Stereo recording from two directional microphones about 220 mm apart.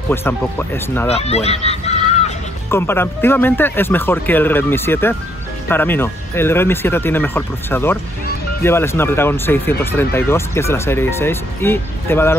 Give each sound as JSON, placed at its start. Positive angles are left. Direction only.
{"t": 0.1, "sound": "speech", "side_deg": 10}
{"t": 1.0, "sound": "speech", "side_deg": 30}
{"t": 2.7, "sound": "speech", "side_deg": 10}